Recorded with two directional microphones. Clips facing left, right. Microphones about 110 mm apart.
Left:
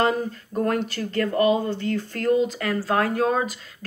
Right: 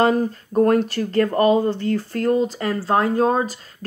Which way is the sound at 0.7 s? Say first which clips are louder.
Right 6 dB; 40° right (ahead or behind).